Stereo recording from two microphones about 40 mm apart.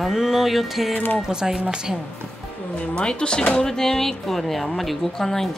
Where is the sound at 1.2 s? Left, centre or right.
Centre.